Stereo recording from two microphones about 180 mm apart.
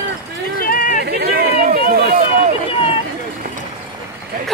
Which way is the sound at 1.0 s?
65° right (ahead or behind).